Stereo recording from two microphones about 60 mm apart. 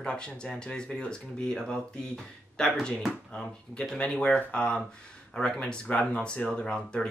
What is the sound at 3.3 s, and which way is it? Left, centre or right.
Speech, centre.